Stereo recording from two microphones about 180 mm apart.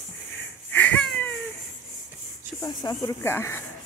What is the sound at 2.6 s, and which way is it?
Speech, 20° left (ahead or behind).